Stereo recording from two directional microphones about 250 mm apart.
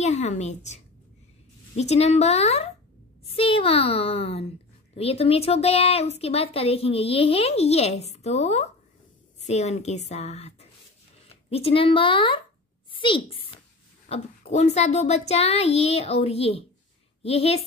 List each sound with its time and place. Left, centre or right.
0.0 s a woman's voice: left
11.5 s a woman's voice: left